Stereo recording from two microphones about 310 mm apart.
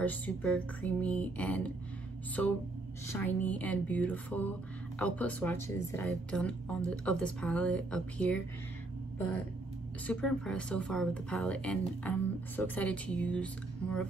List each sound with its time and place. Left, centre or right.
0.0 s speech: centre
10.0 s speech: centre